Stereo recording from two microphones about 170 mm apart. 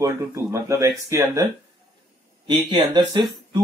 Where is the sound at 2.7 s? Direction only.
25° right (ahead or behind).